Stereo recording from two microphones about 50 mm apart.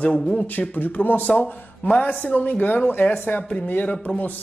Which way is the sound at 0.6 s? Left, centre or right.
Left.